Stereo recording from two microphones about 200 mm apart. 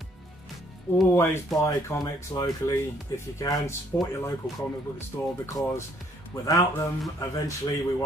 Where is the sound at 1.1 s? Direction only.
10° left (ahead or behind).